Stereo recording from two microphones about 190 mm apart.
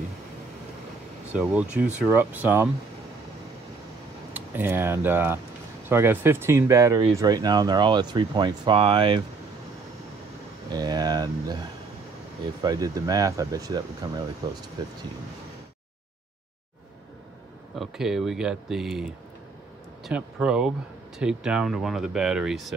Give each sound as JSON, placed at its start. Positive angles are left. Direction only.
{"t": 1.3, "sound": "speech", "side_deg": -5}
{"t": 4.3, "sound": "speech", "side_deg": -10}
{"t": 10.7, "sound": "speech", "side_deg": -20}
{"t": 12.6, "sound": "speech", "side_deg": -20}
{"t": 17.7, "sound": "speech", "side_deg": 0}